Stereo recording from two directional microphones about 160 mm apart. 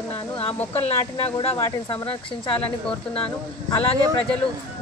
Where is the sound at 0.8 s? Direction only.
40° left (ahead or behind).